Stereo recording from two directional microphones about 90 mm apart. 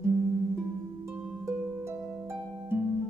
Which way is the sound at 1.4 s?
30° right (ahead or behind).